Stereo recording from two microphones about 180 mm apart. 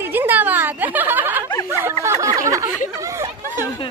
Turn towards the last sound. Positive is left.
turn(degrees=-15)  # may be behind; listen again after turning